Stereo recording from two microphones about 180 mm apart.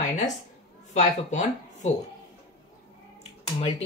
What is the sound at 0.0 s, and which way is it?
A woman's voice, 45° left (ahead or behind).